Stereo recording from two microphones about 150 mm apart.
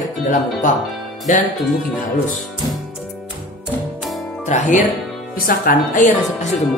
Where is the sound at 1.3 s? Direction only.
60° left (ahead or behind).